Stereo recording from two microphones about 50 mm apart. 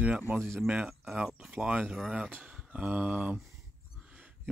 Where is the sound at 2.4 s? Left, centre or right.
Right.